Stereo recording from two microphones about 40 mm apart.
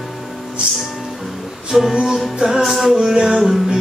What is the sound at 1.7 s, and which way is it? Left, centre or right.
Music, centre.